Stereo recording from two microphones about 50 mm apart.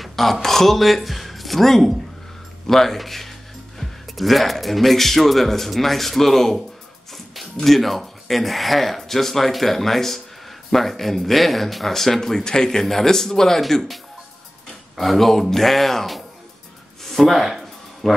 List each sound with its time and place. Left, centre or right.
0.0 s speech: centre
15.0 s speech: centre
17.0 s music: centre